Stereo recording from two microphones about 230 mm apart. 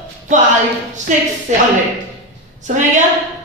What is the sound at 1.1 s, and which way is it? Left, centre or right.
Speech, right.